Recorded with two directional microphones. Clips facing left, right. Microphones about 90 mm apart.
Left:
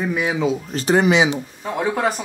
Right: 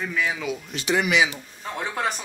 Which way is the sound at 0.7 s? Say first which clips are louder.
Left 5 dB; 40° left (ahead or behind).